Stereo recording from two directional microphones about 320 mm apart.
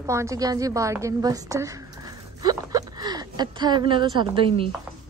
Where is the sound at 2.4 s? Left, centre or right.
Centre.